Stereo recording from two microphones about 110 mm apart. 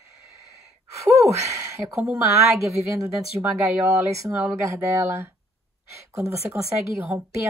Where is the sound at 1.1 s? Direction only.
25° right (ahead or behind).